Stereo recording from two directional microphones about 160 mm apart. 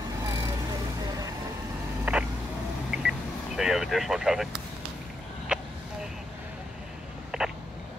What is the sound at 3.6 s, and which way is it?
Speech, 5° right (ahead or behind).